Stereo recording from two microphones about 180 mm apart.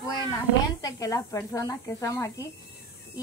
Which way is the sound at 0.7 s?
20° left (ahead or behind).